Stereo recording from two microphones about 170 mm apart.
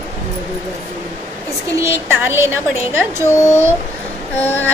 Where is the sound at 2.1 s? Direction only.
10° right (ahead or behind).